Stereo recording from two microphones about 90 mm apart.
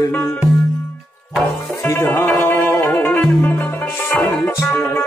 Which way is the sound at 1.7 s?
30° left (ahead or behind).